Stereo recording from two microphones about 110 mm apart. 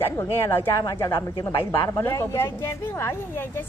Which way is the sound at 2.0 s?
25° left (ahead or behind).